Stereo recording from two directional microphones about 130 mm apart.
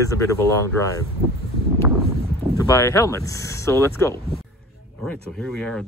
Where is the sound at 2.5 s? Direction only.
25° left (ahead or behind).